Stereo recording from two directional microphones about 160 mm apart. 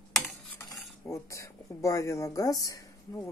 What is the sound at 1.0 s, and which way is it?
Speech, 20° left (ahead or behind).